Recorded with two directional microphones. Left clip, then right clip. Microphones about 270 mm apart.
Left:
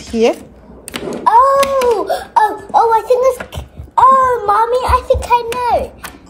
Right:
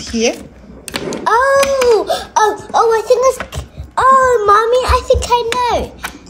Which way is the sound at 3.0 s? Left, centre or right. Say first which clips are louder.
Right 1 dB; right.